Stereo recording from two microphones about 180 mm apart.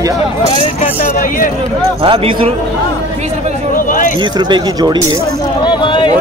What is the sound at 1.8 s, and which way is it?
Speech, 35° right (ahead or behind).